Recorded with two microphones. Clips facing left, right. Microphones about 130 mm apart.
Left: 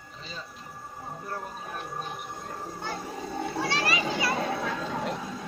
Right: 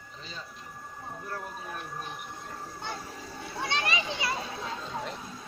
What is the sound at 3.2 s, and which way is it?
Cat, 55° left (ahead or behind).